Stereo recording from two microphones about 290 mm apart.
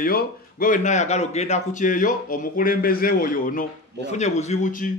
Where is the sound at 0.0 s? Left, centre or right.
Left.